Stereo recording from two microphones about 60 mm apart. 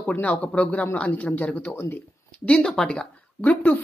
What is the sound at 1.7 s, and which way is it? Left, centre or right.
Speech, left.